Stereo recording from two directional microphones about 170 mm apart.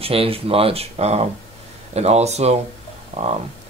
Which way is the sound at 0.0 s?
35° right (ahead or behind).